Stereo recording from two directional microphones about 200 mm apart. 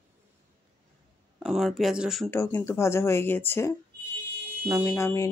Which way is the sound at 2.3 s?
10° left (ahead or behind).